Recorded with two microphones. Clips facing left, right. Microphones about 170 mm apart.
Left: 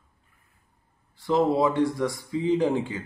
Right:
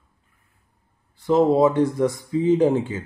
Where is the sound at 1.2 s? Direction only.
20° right (ahead or behind).